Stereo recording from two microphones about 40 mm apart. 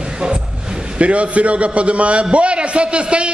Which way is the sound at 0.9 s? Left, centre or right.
Right.